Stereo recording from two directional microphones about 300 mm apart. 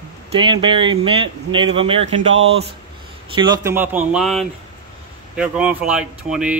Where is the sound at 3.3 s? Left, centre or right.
Centre.